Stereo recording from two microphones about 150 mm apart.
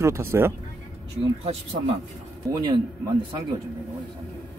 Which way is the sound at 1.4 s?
45° right (ahead or behind).